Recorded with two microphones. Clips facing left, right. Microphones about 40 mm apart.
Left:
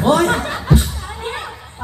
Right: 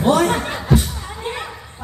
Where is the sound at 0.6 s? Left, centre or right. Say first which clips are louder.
Left 1 dB; left.